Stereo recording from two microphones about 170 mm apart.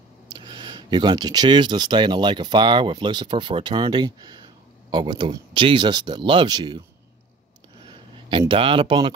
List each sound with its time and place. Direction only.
0.3 s speech: 25° right (ahead or behind)
8.3 s speech: 30° right (ahead or behind)